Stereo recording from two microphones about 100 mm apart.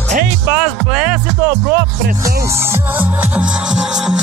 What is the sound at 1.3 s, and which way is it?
Music, 20° right (ahead or behind).